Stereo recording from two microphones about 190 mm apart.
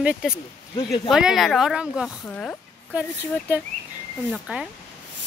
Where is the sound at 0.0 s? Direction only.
5° right (ahead or behind).